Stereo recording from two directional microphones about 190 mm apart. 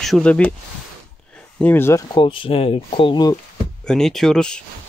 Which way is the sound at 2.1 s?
25° left (ahead or behind).